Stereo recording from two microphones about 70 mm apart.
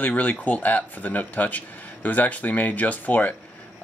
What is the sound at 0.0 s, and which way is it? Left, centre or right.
Speech, left.